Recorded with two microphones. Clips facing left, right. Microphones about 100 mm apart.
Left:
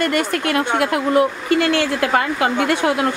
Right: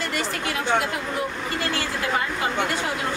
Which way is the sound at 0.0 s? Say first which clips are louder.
Left 8 dB; 60° left (ahead or behind).